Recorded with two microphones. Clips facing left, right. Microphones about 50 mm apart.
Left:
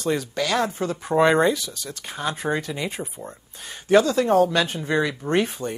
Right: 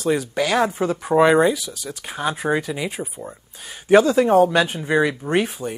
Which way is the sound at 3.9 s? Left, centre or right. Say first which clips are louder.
Right 3 dB; centre.